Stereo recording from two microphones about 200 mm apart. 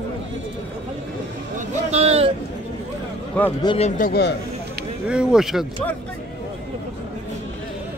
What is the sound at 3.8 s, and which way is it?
Speech, 40° left (ahead or behind).